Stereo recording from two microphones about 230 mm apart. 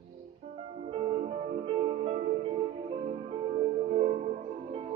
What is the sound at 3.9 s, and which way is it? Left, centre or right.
Music, right.